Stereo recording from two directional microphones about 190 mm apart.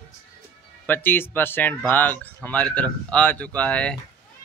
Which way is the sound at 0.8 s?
10° left (ahead or behind).